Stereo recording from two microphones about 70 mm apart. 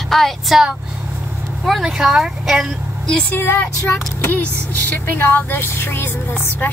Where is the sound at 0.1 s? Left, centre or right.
Centre.